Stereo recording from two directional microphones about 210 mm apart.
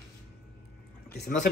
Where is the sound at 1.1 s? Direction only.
55° left (ahead or behind).